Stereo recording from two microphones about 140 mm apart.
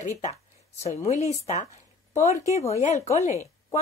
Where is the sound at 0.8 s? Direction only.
50° left (ahead or behind).